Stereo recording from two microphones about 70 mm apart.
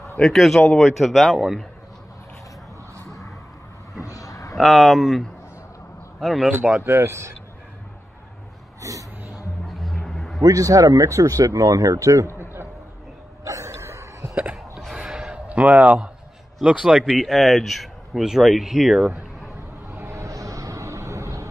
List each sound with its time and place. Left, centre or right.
0.2 s speech: centre
4.0 s a sound: left
4.6 s speech: centre
6.8 s speech: right
8.8 s speech: right
9.8 s a sound: centre
10.4 s speech: right
13.4 s a sound: right
14.5 s a sound: centre
16.8 s speech: centre
17.2 s speech: centre
19.9 s vehicle: right